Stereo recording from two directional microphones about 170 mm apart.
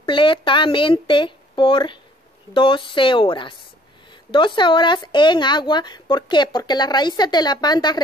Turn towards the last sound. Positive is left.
turn(degrees=25)  # may be behind; listen again after turning